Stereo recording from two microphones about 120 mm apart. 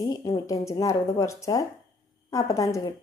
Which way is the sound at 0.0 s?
30° left (ahead or behind).